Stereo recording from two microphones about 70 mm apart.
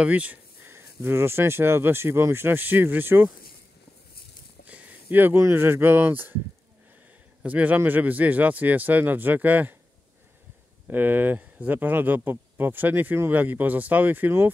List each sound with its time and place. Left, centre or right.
0.0 s speech: right
0.7 s speech: right
4.6 s a sound: centre
5.4 s speech: right
7.4 s speech: right
10.9 s speech: right